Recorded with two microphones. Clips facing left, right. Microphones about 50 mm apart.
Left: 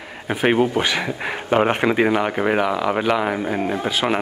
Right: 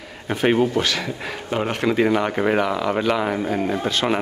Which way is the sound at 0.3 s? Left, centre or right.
Centre.